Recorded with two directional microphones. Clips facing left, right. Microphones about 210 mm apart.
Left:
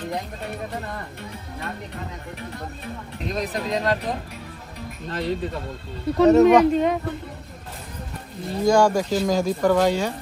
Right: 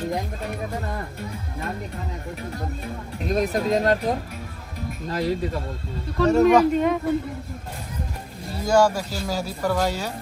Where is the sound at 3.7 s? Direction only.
45° right (ahead or behind).